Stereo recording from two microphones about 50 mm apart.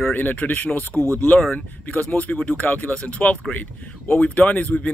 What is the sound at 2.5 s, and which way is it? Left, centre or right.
Speech, left.